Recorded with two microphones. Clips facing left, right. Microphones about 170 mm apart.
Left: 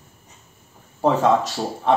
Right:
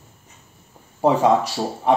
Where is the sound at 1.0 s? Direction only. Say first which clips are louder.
Right 1 dB; 10° right (ahead or behind).